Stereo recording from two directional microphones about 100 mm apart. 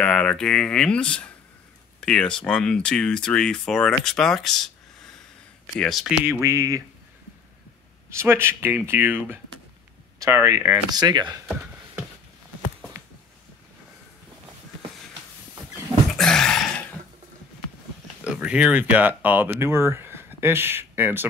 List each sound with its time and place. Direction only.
0.0 s speech: 5° left (ahead or behind)
6.2 s speech: 30° right (ahead or behind)
8.1 s speech: 25° right (ahead or behind)
10.9 s speech: 45° right (ahead or behind)
16.2 s a sound: 5° left (ahead or behind)
18.2 s speech: 10° right (ahead or behind)